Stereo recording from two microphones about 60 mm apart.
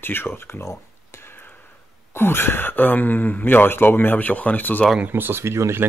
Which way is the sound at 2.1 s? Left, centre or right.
Left.